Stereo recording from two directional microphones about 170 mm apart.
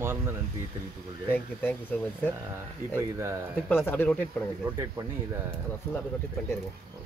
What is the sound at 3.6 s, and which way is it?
Speech, 10° left (ahead or behind).